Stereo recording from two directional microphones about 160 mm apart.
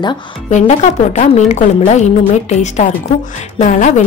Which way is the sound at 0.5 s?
45° left (ahead or behind).